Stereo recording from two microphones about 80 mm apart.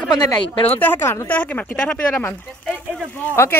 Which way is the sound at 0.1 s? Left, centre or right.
Left.